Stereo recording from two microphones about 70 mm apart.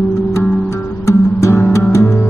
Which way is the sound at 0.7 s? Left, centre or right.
Left.